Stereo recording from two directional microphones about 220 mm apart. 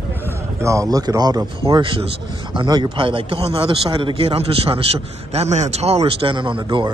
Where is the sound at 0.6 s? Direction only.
15° right (ahead or behind).